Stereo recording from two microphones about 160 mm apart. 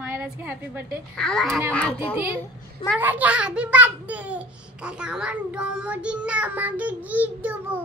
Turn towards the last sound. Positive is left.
turn(degrees=-10)  # may be behind; listen again after turning